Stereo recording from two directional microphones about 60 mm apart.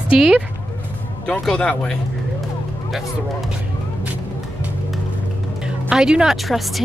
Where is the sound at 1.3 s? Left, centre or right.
Centre.